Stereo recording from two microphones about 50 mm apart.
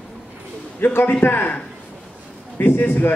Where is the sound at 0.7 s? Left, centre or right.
Left.